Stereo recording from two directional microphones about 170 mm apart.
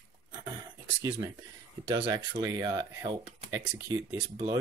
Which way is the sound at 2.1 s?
20° right (ahead or behind).